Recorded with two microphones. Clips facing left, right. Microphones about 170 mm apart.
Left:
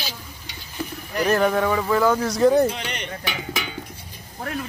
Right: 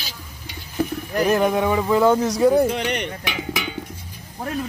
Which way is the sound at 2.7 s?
60° right (ahead or behind).